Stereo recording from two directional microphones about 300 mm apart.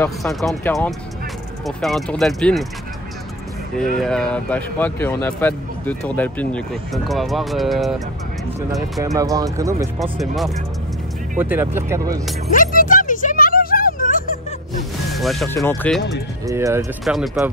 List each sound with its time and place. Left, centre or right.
0.0 s speech: centre
3.9 s speech: centre
9.0 s speech: centre
9.9 s speech: centre
12.5 s music: left
15.1 s speech: centre
16.4 s speech: centre